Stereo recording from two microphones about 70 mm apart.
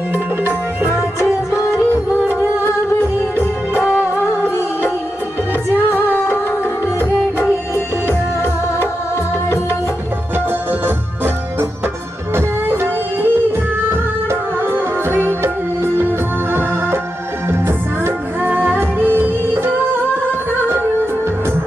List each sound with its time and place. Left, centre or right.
5.9 s music: left
12.4 s music: right
16.5 s music: right